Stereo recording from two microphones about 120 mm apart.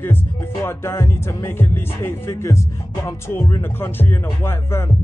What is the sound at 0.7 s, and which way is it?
Speech, 25° left (ahead or behind).